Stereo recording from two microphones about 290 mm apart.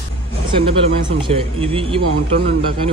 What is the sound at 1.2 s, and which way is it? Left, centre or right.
Speech, centre.